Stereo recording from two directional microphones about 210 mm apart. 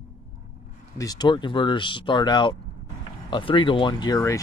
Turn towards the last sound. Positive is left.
turn(degrees=15)  # may be behind; listen again after turning